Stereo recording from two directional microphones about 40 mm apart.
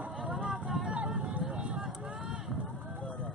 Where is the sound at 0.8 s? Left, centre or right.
Right.